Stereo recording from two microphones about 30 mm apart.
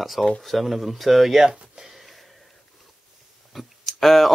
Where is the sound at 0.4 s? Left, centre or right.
Centre.